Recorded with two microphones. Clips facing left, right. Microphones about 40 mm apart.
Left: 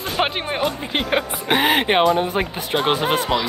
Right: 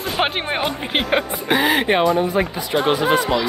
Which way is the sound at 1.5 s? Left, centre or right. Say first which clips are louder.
Even; left.